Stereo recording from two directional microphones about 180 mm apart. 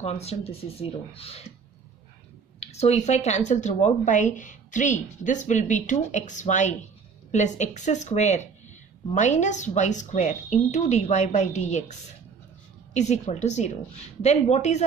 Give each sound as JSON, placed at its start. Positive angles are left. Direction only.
{"t": 0.0, "sound": "a woman's voice", "side_deg": 35}
{"t": 2.6, "sound": "a woman's voice", "side_deg": 35}
{"t": 12.9, "sound": "a woman's voice", "side_deg": 40}